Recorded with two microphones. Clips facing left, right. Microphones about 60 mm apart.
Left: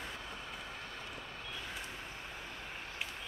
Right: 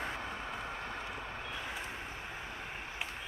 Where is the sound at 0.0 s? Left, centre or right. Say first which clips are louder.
Right 6 dB; right.